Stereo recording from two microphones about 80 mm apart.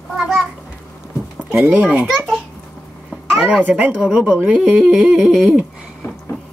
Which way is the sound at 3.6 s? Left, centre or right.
Right.